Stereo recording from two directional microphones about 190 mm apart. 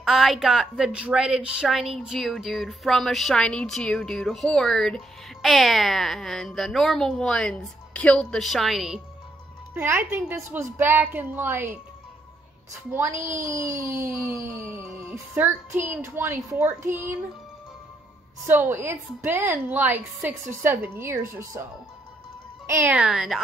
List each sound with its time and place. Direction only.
0.0 s a woman's voice: centre (ahead or behind)
12.9 s a woman's voice: 15° right (ahead or behind)
18.5 s a woman's voice: 10° right (ahead or behind)
22.7 s a woman's voice: 10° right (ahead or behind)